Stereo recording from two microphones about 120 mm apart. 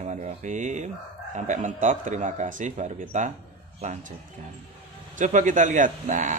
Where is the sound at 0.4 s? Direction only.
80° right.